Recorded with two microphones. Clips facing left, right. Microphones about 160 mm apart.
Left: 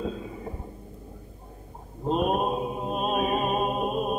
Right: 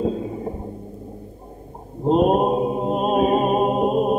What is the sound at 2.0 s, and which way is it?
Chant, 25° right (ahead or behind).